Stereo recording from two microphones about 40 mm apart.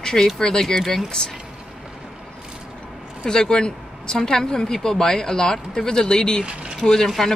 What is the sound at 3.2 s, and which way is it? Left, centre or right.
Speech, centre.